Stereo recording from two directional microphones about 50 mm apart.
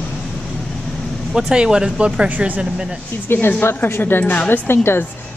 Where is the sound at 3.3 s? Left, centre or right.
Left.